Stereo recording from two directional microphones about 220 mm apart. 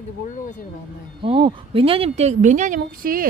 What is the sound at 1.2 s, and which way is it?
Speech, 25° right (ahead or behind).